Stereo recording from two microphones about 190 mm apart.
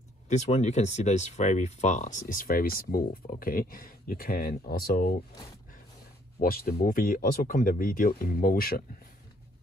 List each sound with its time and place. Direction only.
0.3 s speech: 35° left (ahead or behind)
6.4 s speech: 50° left (ahead or behind)